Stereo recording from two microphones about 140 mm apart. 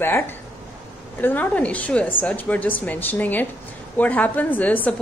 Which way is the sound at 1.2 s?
10° left (ahead or behind).